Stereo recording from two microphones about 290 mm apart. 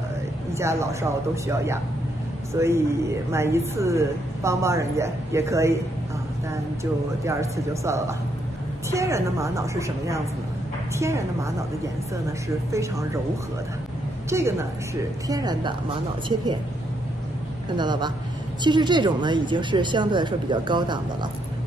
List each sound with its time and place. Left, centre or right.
0.5 s a woman's voice: centre
6.8 s a woman's voice: centre
12.7 s a woman's voice: centre
14.3 s a woman's voice: centre
17.7 s a woman's voice: centre